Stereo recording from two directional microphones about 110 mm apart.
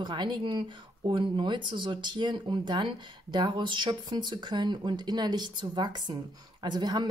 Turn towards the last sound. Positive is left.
turn(degrees=-40)  # may be behind; listen again after turning